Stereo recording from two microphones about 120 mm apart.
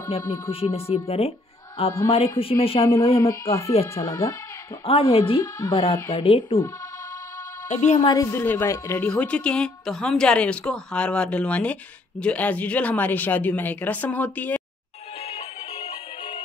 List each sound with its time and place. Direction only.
0.5 s a woman's voice: 55° left (ahead or behind)
3.2 s speech: 25° left (ahead or behind)
4.8 s a woman's voice: 50° left (ahead or behind)
5.4 s speech: 30° left (ahead or behind)
6.1 s a woman's voice: 50° left (ahead or behind)
7.6 s a woman's voice: 70° left (ahead or behind)
8.1 s speech: 30° left (ahead or behind)
8.4 s speech: 20° left (ahead or behind)
9.0 s a woman's voice: 10° left (ahead or behind)
15.1 s music: 55° left (ahead or behind)